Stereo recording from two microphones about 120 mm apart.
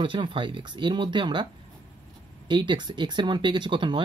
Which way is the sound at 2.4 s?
40° right (ahead or behind).